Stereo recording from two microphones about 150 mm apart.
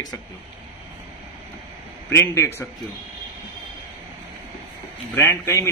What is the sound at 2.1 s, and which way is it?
Speech, 20° left (ahead or behind).